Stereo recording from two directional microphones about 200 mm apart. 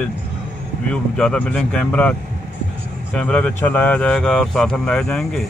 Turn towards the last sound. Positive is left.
turn(degrees=0)  # may be behind; listen again after turning